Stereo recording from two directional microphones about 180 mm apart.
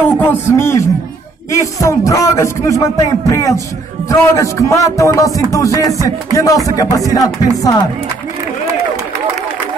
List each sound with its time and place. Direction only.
0.2 s a man's voice: 15° left (ahead or behind)